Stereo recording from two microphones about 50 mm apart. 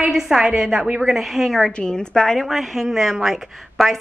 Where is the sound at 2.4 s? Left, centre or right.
Centre.